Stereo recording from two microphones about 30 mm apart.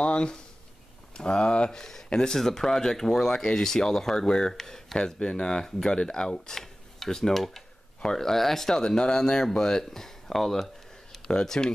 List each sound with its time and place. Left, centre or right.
0.0 s speech: left
1.7 s speech: centre
4.9 s speech: left
6.5 s cutlery: centre
7.3 s speech: centre
8.0 s speech: centre
11.2 s speech: left